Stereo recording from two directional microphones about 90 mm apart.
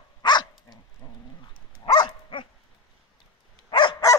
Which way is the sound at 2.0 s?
65° left (ahead or behind).